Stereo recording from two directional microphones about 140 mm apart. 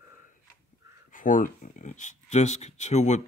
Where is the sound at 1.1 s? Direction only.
70° left (ahead or behind); by 3.2 s 55° left (ahead or behind).